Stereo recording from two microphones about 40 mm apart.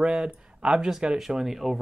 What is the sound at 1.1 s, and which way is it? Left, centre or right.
Speech, centre.